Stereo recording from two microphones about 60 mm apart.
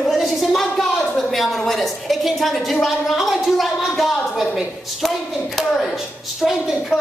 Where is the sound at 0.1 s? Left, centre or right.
Centre.